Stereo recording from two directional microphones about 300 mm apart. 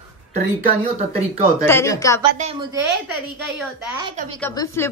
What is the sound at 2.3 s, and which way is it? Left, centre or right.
Speech, right.